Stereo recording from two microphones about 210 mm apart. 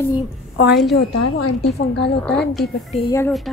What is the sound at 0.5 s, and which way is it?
A woman's voice, 50° left (ahead or behind).